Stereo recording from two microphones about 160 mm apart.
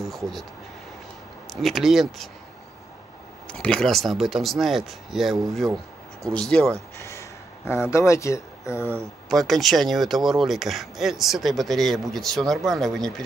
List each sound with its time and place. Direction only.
0.0 s speech: centre (ahead or behind)
1.5 s speech: centre (ahead or behind)
3.4 s speech: 5° left (ahead or behind)
7.0 s speech: 20° left (ahead or behind)
9.3 s speech: centre (ahead or behind)